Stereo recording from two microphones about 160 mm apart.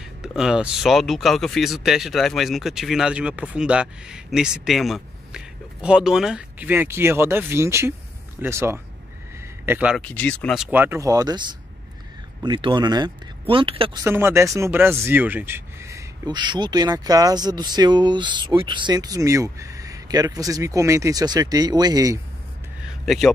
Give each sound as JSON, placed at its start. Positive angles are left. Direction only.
{"t": 0.0, "sound": "speech", "side_deg": -5}
{"t": 9.9, "sound": "speech", "side_deg": 10}
{"t": 10.6, "sound": "speech", "side_deg": -10}
{"t": 14.0, "sound": "speech", "side_deg": -15}
{"t": 23.0, "sound": "a man's voice", "side_deg": 0}